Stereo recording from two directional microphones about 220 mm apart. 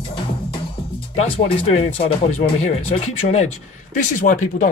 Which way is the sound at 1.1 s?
30° left (ahead or behind).